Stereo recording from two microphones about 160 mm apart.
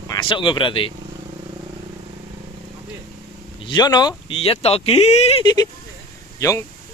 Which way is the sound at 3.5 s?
30° left (ahead or behind).